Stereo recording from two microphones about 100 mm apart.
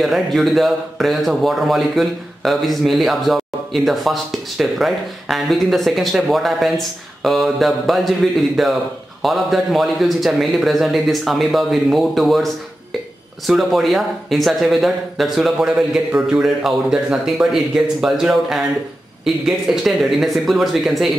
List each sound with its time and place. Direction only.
0.0 s a man's voice: centre (ahead or behind)
13.5 s a man's voice: centre (ahead or behind)